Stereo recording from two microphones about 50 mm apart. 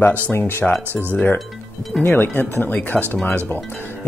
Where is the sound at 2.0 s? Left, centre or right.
Left.